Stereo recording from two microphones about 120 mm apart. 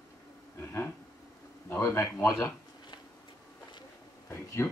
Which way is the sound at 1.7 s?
20° left (ahead or behind).